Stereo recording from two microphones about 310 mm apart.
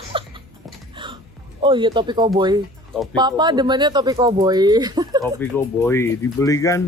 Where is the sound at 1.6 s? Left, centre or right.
Centre.